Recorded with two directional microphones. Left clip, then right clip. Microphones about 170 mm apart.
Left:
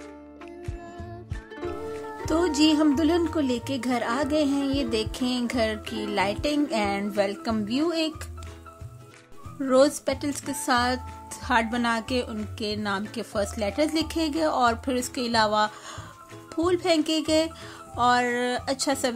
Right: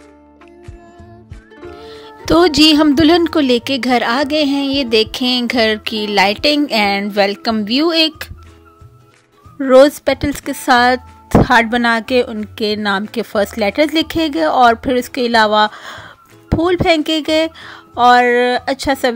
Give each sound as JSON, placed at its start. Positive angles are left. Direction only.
{"t": 1.5, "sound": "music", "side_deg": 0}
{"t": 2.2, "sound": "speech", "side_deg": -40}
{"t": 9.6, "sound": "speech", "side_deg": -40}